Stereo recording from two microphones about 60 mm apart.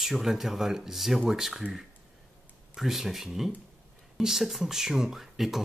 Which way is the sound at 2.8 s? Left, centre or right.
Centre.